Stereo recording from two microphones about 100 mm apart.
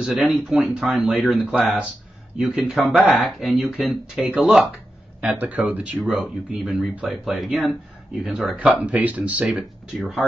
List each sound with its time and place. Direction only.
0.0 s speech: 5° right (ahead or behind)
5.2 s speech: 15° right (ahead or behind)
5.9 s speech: centre (ahead or behind)
8.8 s speech: 15° right (ahead or behind)